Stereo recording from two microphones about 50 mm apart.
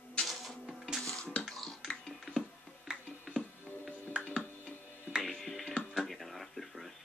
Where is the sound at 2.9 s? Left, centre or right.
Centre.